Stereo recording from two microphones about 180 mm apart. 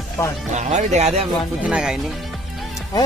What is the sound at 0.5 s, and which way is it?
Speech, 40° right (ahead or behind).